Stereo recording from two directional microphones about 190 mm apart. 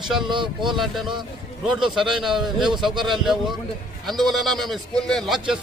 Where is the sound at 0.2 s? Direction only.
25° right (ahead or behind).